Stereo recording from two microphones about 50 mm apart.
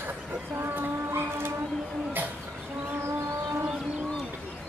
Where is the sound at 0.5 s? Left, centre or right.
Right.